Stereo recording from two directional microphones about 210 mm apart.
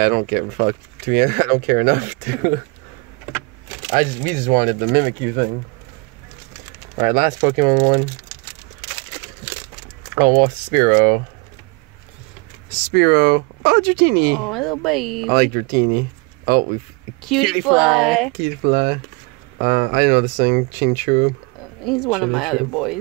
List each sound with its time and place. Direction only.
0.0 s speech: 40° right (ahead or behind)
3.9 s speech: 40° right (ahead or behind)
7.0 s speech: 40° right (ahead or behind)
10.1 s speech: 40° right (ahead or behind)
12.9 s speech: 50° right (ahead or behind)
14.4 s speech: centre (ahead or behind)
15.3 s speech: 45° right (ahead or behind)
17.2 s speech: centre (ahead or behind)
18.4 s speech: 50° right (ahead or behind)
21.8 s speech: centre (ahead or behind)